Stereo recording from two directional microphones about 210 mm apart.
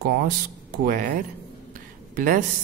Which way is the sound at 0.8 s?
40° right (ahead or behind).